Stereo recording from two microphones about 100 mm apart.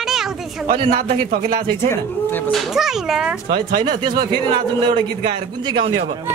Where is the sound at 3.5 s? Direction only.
45° right (ahead or behind).